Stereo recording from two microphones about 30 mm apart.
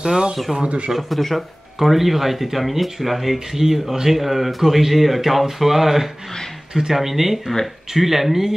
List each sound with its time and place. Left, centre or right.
0.0 s speech: right
0.6 s speech: right
0.9 s speech: centre